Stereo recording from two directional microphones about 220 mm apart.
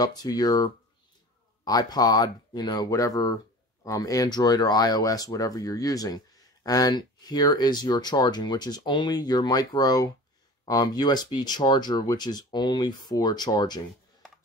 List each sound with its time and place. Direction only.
0.0 s speech: 15° left (ahead or behind)